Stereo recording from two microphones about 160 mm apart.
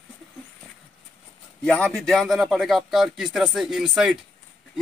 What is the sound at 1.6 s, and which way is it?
A man's voice, 5° left (ahead or behind).